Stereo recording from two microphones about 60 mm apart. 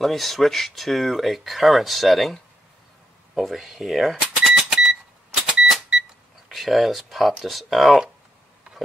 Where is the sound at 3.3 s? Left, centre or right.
Centre.